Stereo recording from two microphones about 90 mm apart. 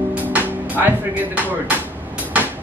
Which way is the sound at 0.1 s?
20° right (ahead or behind).